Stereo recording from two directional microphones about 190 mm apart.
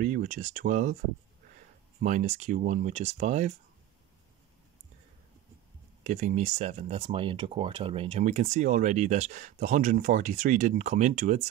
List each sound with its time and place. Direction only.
0.0 s speech: 45° right (ahead or behind)
2.0 s speech: 40° right (ahead or behind)
6.0 s speech: 40° right (ahead or behind)